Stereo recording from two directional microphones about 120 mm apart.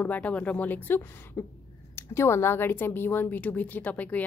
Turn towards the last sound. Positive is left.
turn(degrees=15)  # may be behind; listen again after turning